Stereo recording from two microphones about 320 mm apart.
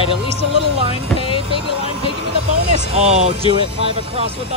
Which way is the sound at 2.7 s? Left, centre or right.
Centre.